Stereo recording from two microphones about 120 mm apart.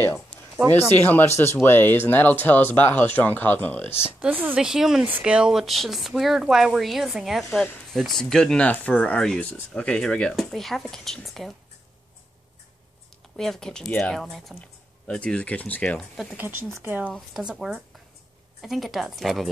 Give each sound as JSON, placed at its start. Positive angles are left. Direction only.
{"t": 1.0, "sound": "speech", "side_deg": 20}
{"t": 4.2, "sound": "speech", "side_deg": -15}
{"t": 4.6, "sound": "speech", "side_deg": -5}
{"t": 13.4, "sound": "speech", "side_deg": 5}
{"t": 16.3, "sound": "speech", "side_deg": -15}
{"t": 17.1, "sound": "speech", "side_deg": -5}